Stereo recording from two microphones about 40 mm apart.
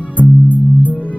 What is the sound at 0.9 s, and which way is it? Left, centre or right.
Music, left.